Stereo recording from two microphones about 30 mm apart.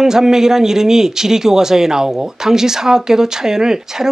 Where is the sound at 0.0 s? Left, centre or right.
Centre.